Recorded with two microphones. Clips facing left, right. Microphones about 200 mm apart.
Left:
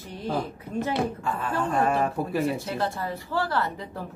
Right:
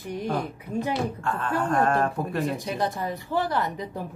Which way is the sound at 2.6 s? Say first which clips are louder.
Right 1 dB; 15° right (ahead or behind).